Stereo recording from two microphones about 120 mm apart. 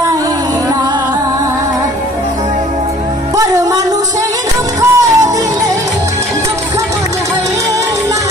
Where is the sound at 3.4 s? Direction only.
30° right (ahead or behind).